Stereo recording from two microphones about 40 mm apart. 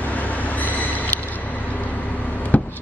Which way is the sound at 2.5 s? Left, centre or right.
Left.